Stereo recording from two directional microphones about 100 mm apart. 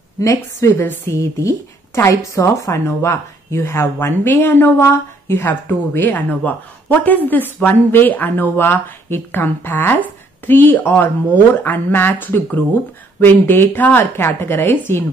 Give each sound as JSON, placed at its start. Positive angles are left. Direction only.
{"t": 0.2, "sound": "a woman's voice", "side_deg": 30}